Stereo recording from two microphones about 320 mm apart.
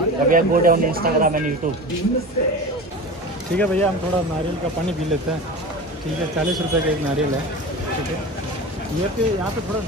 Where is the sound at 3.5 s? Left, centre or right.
Centre.